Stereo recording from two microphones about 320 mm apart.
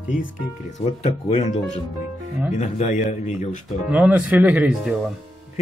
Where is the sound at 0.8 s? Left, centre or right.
Centre.